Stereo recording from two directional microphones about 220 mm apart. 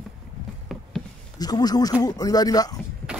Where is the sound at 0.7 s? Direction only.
Centre (ahead or behind).